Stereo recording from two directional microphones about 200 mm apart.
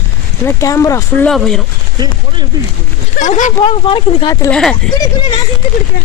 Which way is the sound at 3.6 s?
25° left (ahead or behind).